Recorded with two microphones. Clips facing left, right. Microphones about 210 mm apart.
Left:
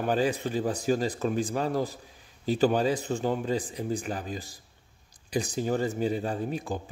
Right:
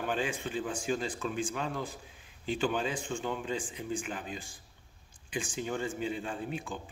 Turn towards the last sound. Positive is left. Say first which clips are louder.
# left 6 dB
turn(degrees=40)  # may be behind; listen again after turning